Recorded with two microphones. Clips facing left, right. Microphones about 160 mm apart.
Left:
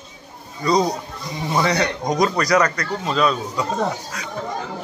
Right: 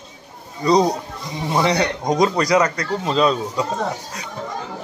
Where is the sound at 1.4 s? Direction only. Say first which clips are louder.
Right 1 dB; 25° right (ahead or behind).